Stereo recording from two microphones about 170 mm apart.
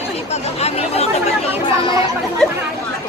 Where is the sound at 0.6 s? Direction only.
35° left (ahead or behind).